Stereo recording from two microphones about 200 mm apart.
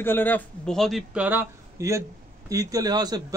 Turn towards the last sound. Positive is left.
turn(degrees=-20)  # may be behind; listen again after turning